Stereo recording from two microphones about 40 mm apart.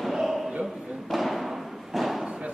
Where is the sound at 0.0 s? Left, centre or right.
Centre.